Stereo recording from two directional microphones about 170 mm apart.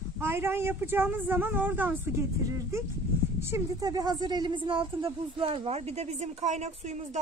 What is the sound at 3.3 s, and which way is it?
A woman's voice, 15° right (ahead or behind).